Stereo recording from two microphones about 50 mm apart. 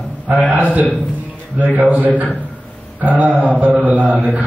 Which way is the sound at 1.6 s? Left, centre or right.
Right.